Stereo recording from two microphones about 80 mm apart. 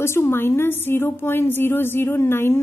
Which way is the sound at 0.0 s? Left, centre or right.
Left.